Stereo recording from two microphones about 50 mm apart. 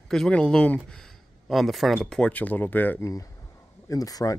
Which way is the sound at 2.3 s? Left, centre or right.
Left.